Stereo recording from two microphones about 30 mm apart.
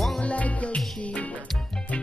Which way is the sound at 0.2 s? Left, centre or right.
Left.